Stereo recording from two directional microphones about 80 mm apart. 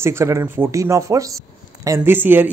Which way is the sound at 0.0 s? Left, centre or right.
Right.